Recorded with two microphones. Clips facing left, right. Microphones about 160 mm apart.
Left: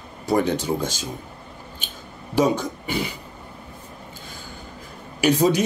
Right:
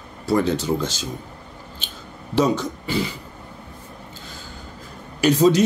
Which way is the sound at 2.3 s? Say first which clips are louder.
Even; 10° left (ahead or behind).